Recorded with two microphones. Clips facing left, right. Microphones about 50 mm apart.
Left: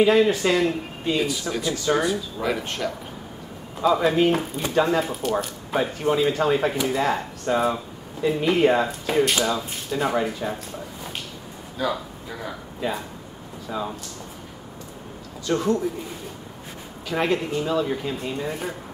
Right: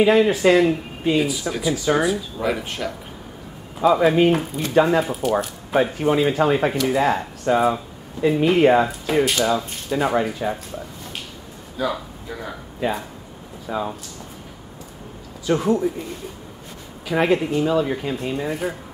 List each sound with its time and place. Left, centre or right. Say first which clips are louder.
0.0 s speech: right 2 dB; centre
11.7 s speech: right 1 dB; centre
15.4 s speech: right 3 dB; centre
17.0 s speech: right 4 dB; centre